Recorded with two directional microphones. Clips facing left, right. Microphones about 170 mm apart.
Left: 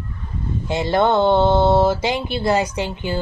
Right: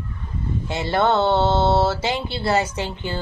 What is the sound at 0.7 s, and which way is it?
Speech, 15° left (ahead or behind).